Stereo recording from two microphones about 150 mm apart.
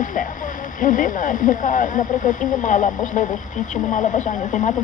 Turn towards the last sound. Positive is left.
turn(degrees=55)  # may be behind; listen again after turning